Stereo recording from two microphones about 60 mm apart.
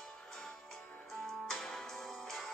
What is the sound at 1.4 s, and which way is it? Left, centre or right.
Music, centre.